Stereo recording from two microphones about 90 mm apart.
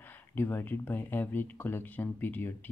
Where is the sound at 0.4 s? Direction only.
25° left (ahead or behind).